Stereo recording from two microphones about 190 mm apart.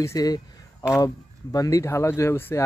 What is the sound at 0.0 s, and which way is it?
Speech, 20° left (ahead or behind).